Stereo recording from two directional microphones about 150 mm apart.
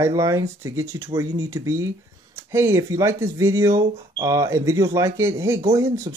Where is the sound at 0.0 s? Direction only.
20° right (ahead or behind).